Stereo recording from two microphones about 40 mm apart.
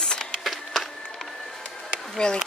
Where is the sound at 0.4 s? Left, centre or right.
Centre.